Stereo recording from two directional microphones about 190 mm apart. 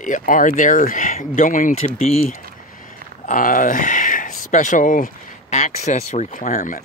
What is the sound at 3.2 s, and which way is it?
Speech, 45° left (ahead or behind).